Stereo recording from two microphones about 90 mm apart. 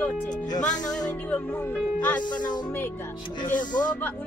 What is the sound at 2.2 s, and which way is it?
Music, 55° left (ahead or behind).